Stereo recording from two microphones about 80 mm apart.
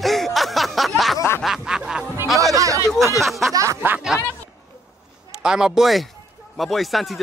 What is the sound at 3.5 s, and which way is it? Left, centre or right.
Speech, right.